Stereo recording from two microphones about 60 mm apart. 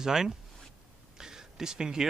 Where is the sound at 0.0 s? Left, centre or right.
Centre.